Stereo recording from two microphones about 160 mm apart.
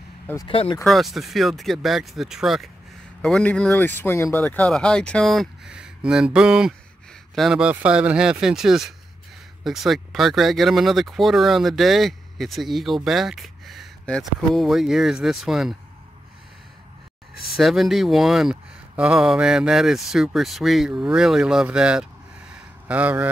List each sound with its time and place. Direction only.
0.5 s speech: 35° left (ahead or behind)
0.8 s speech: centre (ahead or behind)
17.4 s speech: centre (ahead or behind)
22.5 s a sound: 10° right (ahead or behind)